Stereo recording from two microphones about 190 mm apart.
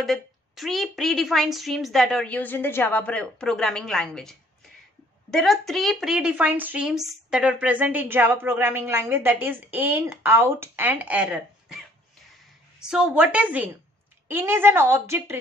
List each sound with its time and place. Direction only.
0.0 s a woman's voice: centre (ahead or behind)
12.8 s speech: 5° right (ahead or behind)